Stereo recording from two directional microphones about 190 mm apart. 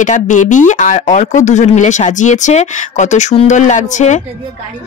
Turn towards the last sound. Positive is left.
turn(degrees=40)  # may be behind; listen again after turning